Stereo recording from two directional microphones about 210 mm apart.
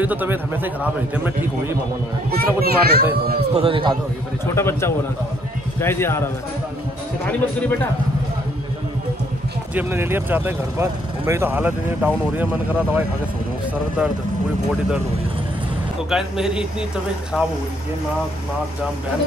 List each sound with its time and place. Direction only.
0.0 s speech: 10° right (ahead or behind)
2.3 s a child's voice: 45° right (ahead or behind)
3.3 s a man's voice: 25° right (ahead or behind)
4.6 s speech: 10° left (ahead or behind)
7.2 s speech: 5° left (ahead or behind)
9.8 s speech: 10° right (ahead or behind)
16.1 s speech: 5° right (ahead or behind)